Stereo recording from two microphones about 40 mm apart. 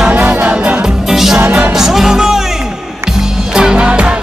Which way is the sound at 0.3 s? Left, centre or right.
Right.